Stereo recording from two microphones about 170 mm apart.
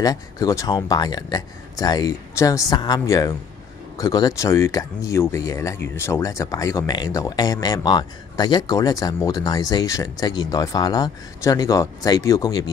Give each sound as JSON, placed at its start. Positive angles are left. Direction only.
{"t": 0.0, "sound": "speech", "side_deg": 20}